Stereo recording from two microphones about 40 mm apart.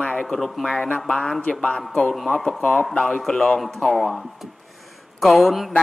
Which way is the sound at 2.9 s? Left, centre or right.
Centre.